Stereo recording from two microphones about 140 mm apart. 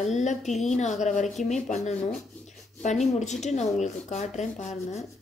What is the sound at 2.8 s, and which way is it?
Speech, 55° left (ahead or behind).